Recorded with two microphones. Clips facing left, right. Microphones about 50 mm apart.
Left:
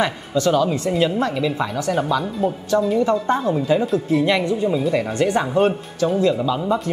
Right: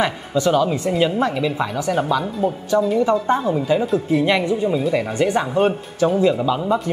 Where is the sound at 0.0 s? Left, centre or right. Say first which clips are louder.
Even; centre.